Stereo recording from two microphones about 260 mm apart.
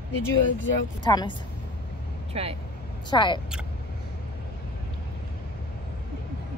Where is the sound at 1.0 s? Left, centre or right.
Centre.